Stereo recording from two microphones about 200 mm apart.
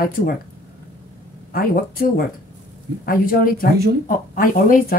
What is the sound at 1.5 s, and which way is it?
Speech, 45° left (ahead or behind).